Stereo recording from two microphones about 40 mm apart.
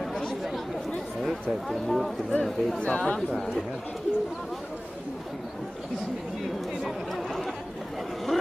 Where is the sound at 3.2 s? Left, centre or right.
Centre.